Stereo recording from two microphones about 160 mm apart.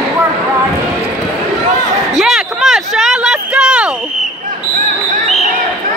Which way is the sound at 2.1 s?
5° right (ahead or behind).